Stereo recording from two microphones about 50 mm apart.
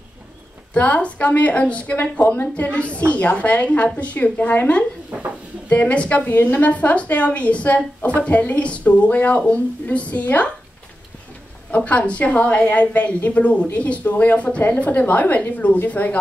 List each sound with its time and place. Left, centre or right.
0.7 s a woman's voice: left
5.7 s a woman's voice: left
11.7 s a woman's voice: left